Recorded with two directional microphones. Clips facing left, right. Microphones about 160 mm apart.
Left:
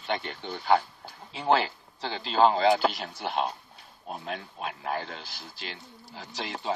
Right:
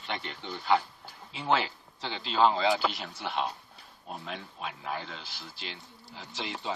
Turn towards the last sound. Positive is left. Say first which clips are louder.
# left 2 dB
turn(degrees=45)  # may be behind; listen again after turning